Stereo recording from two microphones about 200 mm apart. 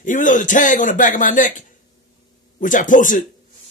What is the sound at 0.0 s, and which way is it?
A man's voice, 40° left (ahead or behind).